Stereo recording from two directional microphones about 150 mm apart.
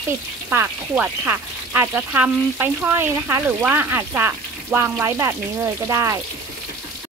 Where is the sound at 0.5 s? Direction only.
15° right (ahead or behind).